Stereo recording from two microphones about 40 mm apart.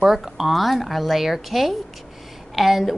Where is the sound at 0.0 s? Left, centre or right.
Centre.